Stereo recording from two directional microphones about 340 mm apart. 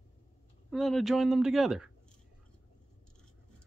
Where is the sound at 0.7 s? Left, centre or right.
Centre.